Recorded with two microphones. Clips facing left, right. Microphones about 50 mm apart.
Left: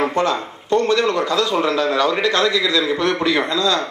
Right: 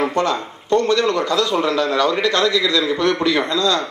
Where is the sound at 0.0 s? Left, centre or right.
Centre.